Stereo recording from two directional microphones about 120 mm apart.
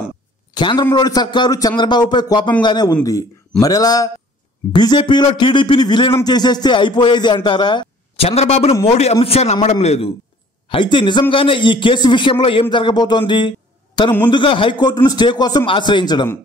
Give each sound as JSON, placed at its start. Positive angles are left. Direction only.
{"t": 0.6, "sound": "a man's voice", "side_deg": 40}
{"t": 8.3, "sound": "a man's voice", "side_deg": 60}
{"t": 10.7, "sound": "a man's voice", "side_deg": 45}
{"t": 13.3, "sound": "a sound", "side_deg": 40}
{"t": 14.3, "sound": "a man's voice", "side_deg": 45}